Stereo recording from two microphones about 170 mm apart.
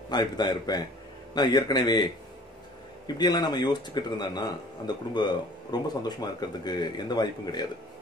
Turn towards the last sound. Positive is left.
turn(degrees=25)  # may be behind; listen again after turning